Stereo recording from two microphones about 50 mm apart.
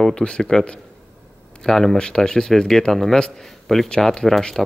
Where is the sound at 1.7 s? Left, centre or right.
Centre.